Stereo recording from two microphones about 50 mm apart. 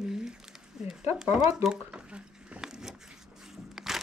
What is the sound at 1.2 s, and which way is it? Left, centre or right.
Speech, centre.